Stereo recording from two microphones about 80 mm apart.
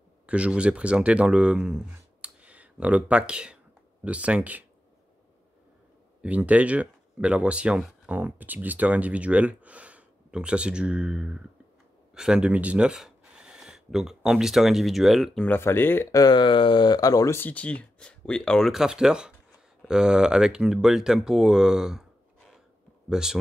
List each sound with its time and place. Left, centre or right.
0.3 s speech: centre
6.2 s speech: centre
15.5 s speech: left
16.1 s speech: left
16.3 s speech: left
17.3 s speech: left
18.7 s speech: centre
23.0 s speech: centre